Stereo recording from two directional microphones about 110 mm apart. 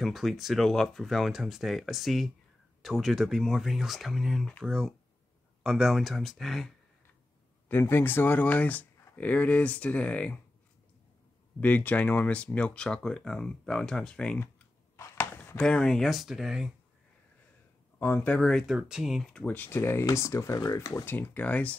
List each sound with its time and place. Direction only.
0.0 s speech: centre (ahead or behind)
7.6 s speech: 20° left (ahead or behind)
11.6 s speech: 15° left (ahead or behind)
15.0 s a sound: 25° left (ahead or behind)
15.6 s speech: 5° left (ahead or behind)
17.9 s speech: 20° left (ahead or behind)